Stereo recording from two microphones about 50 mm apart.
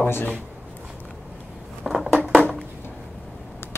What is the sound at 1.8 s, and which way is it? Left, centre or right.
Crushing, centre.